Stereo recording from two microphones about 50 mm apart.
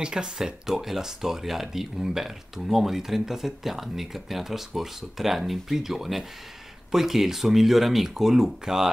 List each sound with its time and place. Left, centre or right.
0.0 s speech: centre